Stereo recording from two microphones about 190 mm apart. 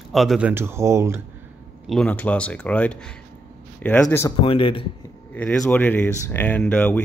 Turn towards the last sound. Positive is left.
turn(degrees=5)  # may be behind; listen again after turning